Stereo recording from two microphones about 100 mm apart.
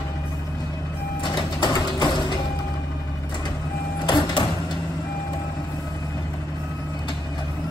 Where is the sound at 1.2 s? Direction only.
50° left (ahead or behind).